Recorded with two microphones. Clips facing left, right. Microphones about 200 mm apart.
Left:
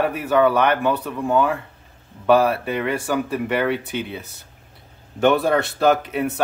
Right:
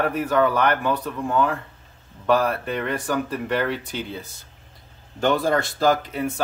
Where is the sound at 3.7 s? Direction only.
60° left (ahead or behind).